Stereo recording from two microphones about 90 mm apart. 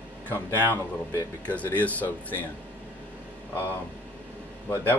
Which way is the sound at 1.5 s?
20° left (ahead or behind).